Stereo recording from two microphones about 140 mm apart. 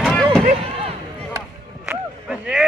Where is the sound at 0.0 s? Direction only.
Centre (ahead or behind).